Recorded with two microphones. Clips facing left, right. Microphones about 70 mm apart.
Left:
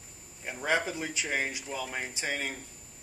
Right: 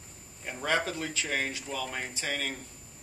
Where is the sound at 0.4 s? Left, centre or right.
Centre.